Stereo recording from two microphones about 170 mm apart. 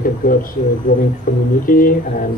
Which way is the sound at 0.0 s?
55° left (ahead or behind).